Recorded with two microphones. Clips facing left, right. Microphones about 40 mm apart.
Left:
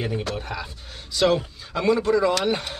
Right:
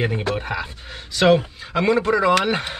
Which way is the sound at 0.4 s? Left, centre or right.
Right.